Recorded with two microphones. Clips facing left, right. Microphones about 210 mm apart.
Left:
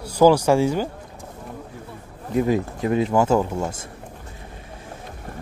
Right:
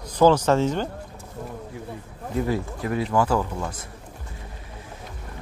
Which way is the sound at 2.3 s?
20° left (ahead or behind).